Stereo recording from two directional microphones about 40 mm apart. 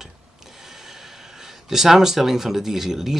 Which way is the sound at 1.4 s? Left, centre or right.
Centre.